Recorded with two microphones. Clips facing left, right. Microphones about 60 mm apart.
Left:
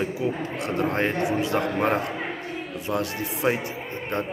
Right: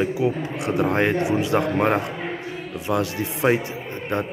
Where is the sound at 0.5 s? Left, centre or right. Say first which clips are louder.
Right 3 dB; left.